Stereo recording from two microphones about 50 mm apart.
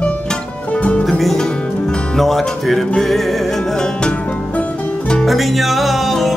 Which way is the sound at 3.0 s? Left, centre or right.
Centre.